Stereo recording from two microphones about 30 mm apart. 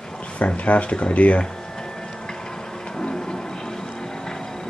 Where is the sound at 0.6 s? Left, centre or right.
Left.